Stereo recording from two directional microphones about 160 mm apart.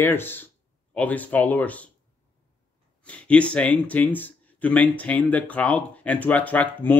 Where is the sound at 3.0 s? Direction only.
10° left (ahead or behind).